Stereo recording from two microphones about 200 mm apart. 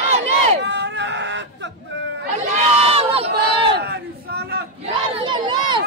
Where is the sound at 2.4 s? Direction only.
35° right (ahead or behind).